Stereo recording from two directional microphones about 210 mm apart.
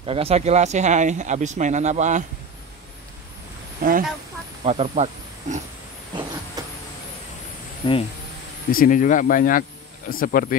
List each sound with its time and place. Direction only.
0.0 s speech: 25° right (ahead or behind)
3.8 s speech: 45° right (ahead or behind)
4.6 s speech: 30° right (ahead or behind)
7.8 s speech: 20° left (ahead or behind)
8.7 s speech: 40° left (ahead or behind)